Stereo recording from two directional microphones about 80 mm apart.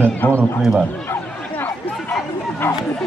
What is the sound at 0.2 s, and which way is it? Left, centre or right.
Speech, left.